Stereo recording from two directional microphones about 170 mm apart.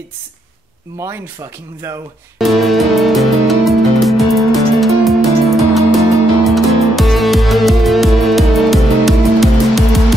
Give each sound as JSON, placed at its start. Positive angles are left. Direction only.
{"t": 0.9, "sound": "speech", "side_deg": -15}
{"t": 2.3, "sound": "music", "side_deg": 0}